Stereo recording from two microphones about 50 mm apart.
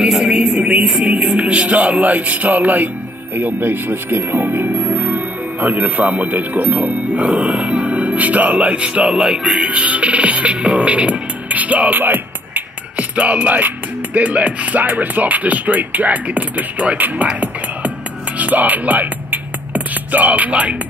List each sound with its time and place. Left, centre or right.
0.0 s music: centre
0.4 s music: right
3.3 s speech: right; by 9.5 s centre
9.6 s music: right
12.9 s music: right
18.4 s music: right